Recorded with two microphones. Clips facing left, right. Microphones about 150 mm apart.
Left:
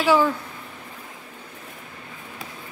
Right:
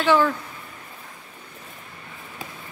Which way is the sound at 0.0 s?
10° left (ahead or behind).